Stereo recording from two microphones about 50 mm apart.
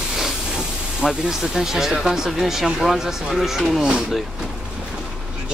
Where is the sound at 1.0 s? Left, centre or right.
Centre.